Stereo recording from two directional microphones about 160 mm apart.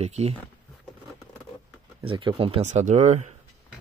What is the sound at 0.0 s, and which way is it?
Speech, 40° right (ahead or behind).